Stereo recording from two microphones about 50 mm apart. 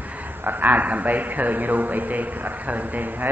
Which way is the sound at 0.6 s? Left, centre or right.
Right.